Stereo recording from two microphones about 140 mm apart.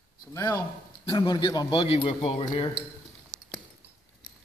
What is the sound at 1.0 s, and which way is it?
A man's voice, 30° left (ahead or behind).